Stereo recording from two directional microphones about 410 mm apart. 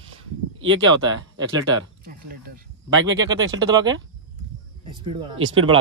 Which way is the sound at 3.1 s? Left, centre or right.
Centre.